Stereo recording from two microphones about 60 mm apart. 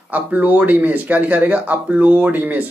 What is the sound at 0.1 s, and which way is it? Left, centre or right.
A man's voice, right.